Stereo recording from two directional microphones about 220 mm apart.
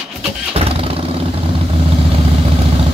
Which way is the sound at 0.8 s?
25° right (ahead or behind).